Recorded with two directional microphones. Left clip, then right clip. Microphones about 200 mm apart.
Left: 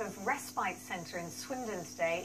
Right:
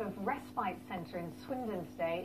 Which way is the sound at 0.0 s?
15° left (ahead or behind).